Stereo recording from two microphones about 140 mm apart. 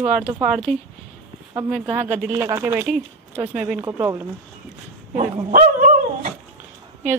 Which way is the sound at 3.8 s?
25° right (ahead or behind).